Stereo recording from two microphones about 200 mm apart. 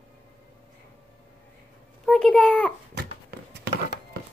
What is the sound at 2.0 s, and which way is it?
Speech, 5° left (ahead or behind).